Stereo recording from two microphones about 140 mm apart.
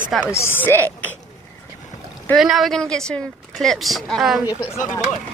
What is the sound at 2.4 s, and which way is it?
Speech, centre (ahead or behind).